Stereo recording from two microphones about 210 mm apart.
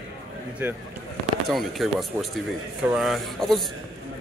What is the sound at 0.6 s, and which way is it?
Speech, 10° right (ahead or behind).